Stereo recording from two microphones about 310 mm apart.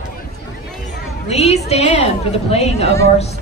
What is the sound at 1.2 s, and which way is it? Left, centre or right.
A woman's voice, left.